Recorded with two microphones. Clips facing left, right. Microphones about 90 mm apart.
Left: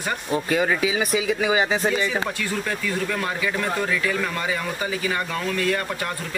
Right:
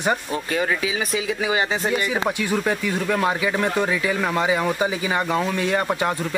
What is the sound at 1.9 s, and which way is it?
Speech, 15° right (ahead or behind).